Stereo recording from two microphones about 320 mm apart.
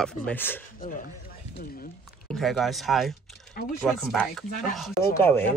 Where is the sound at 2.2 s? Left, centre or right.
Centre.